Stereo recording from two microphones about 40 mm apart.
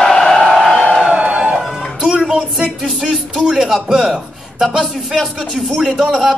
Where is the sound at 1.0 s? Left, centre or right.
Right.